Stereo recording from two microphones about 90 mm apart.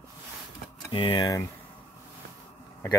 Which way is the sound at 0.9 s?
70° left (ahead or behind).